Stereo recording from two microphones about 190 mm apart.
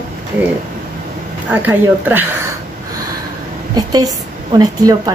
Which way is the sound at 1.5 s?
10° right (ahead or behind).